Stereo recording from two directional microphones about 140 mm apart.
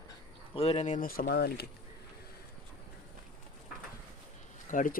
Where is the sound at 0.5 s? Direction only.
50° left (ahead or behind); by 1.4 s 90° left.